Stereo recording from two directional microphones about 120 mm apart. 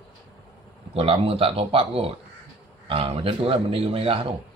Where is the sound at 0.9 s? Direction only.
50° right (ahead or behind).